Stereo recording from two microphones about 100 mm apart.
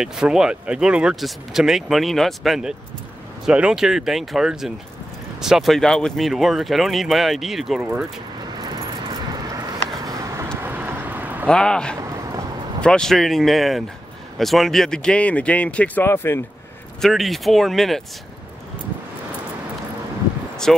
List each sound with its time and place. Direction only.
0.0 s speech: 5° right (ahead or behind)
10.0 s a sound: 30° right (ahead or behind)
10.6 s vehicle: 20° right (ahead or behind)
11.4 s speech: 10° left (ahead or behind); by 16.4 s 25° left (ahead or behind)
17.0 s speech: centre (ahead or behind)
20.7 s speech: centre (ahead or behind)